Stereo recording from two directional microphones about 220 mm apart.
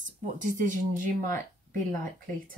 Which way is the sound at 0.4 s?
35° right (ahead or behind).